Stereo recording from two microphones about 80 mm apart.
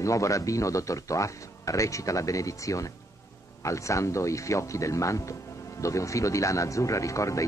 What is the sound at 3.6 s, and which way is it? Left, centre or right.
A man's voice, left.